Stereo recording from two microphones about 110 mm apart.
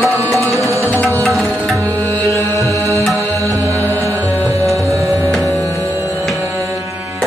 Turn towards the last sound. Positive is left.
turn(degrees=-30)  # may be behind; listen again after turning